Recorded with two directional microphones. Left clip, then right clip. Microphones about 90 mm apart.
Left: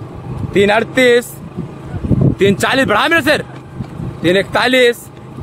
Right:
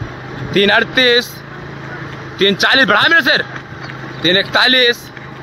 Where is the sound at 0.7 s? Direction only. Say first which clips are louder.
Even; 25° left (ahead or behind).